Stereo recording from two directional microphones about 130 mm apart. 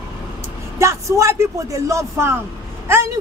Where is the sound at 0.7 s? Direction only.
25° right (ahead or behind).